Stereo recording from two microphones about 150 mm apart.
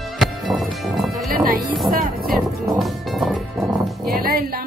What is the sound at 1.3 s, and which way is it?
Music, 80° right.